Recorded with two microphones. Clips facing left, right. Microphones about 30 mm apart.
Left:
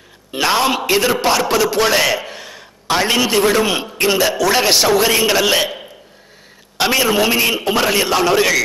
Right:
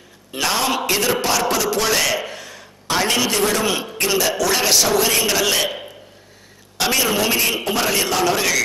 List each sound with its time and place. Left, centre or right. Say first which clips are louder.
0.3 s a man's voice: left 4 dB; left
2.3 s a sound: left 2 dB; left
3.0 s a man's voice: left 4 dB; centre
6.8 s a man's voice: left 4 dB; centre